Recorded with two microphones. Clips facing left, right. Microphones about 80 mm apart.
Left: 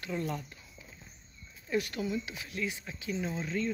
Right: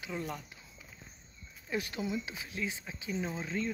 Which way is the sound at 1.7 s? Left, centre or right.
Right.